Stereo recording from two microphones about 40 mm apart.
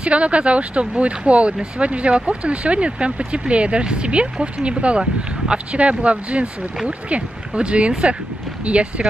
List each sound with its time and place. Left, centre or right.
0.0 s speech: right